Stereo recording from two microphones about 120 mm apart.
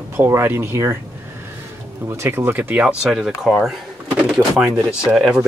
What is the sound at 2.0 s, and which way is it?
Speech, 20° right (ahead or behind).